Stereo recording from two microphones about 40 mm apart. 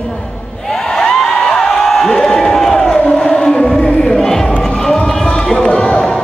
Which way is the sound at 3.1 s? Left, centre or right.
Centre.